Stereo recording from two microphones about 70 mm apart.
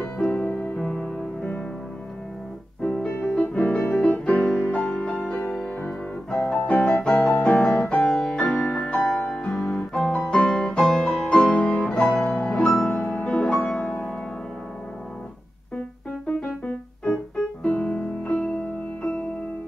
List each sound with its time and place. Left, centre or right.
0.3 s music: left
2.8 s music: centre
5.8 s piano: centre
7.4 s music: centre
13.0 s music: left
13.6 s music: centre
16.3 s music: centre